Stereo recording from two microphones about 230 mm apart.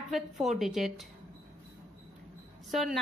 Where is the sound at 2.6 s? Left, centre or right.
Centre.